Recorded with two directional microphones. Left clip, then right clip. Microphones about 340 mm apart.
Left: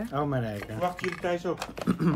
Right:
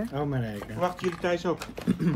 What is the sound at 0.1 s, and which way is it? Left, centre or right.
Speech, centre.